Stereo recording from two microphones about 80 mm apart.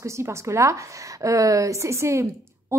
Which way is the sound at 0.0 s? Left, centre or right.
Right.